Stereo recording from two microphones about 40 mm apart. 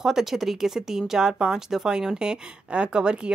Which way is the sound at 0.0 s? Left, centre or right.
Centre.